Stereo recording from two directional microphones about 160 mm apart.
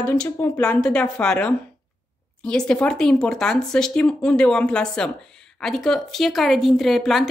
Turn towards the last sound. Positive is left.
turn(degrees=0)  # may be behind; listen again after turning